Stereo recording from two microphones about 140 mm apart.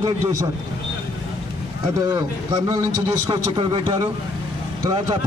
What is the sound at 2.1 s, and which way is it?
A man's voice, 20° right (ahead or behind).